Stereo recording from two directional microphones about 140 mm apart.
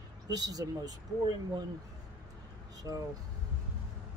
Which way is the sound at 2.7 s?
25° right (ahead or behind).